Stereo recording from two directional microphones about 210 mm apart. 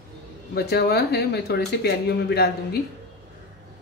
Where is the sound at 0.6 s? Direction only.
50° left (ahead or behind).